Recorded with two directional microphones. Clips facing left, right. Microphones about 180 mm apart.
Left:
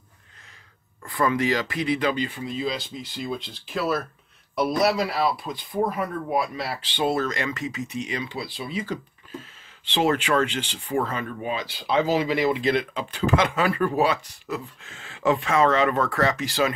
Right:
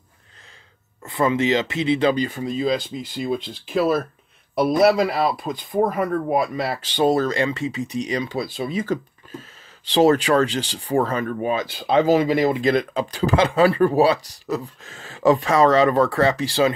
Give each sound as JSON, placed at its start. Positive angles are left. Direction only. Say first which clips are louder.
{"t": 1.0, "sound": "speech", "louder": "right 3 dB", "side_deg": -25}
{"t": 4.9, "sound": "speech", "louder": "right 4 dB", "side_deg": -50}